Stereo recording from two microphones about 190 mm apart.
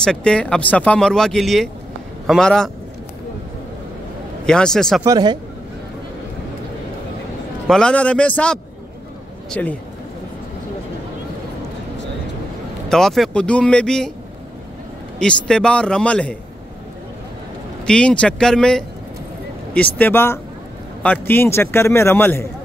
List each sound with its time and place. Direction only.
0.0 s speech: 5° left (ahead or behind)
4.5 s speech: 5° left (ahead or behind)
5.0 s speech: 20° right (ahead or behind)
7.6 s a man's voice: 5° left (ahead or behind)
12.9 s speech: centre (ahead or behind)
15.1 s speech: 5° left (ahead or behind)
17.8 s a man's voice: 5° left (ahead or behind)